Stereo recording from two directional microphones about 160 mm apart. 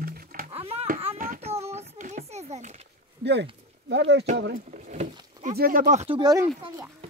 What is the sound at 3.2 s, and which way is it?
Speech, 90° right.